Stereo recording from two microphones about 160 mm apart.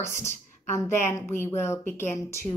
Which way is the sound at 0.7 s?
15° left (ahead or behind).